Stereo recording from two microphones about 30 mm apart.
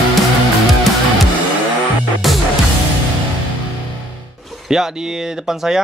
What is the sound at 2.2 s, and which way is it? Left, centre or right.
Music, centre.